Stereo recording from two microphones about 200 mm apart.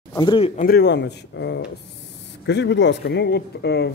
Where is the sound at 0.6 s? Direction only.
50° left (ahead or behind).